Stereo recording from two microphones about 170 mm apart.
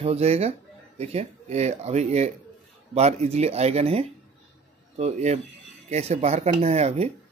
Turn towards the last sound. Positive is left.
turn(degrees=-40)  # may be behind; listen again after turning